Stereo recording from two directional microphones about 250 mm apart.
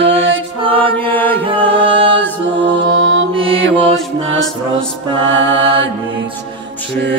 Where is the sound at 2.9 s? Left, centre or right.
Right.